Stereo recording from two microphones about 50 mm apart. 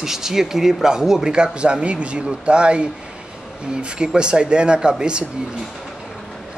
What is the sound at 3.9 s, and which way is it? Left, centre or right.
Speech, centre.